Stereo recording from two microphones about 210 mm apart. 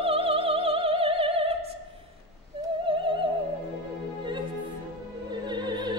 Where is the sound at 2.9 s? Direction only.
25° right (ahead or behind).